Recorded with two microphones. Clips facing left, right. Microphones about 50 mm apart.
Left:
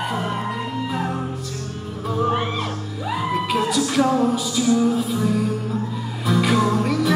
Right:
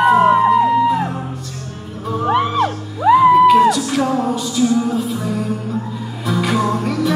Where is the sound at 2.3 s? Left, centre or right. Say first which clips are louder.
Right 7 dB; right.